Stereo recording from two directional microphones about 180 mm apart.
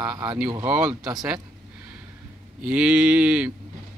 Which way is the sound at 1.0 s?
20° right (ahead or behind).